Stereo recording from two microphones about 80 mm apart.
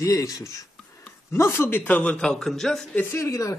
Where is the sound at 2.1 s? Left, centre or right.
Centre.